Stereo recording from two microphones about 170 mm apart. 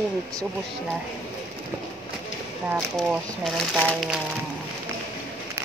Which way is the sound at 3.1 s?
Centre (ahead or behind).